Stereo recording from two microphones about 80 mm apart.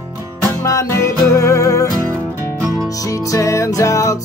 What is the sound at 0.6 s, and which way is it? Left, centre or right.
Music, left.